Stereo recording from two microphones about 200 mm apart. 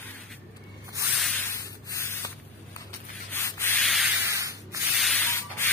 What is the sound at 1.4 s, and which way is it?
Spray, 15° left (ahead or behind).